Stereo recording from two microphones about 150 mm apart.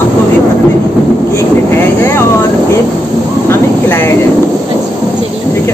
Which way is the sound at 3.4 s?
15° left (ahead or behind).